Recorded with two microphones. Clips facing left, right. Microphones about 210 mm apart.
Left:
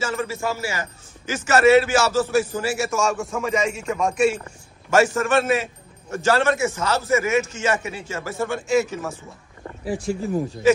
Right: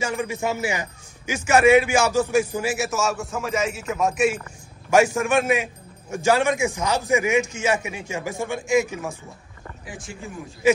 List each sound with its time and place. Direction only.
0.0 s a man's voice: 15° right (ahead or behind)
9.8 s speech: 35° left (ahead or behind)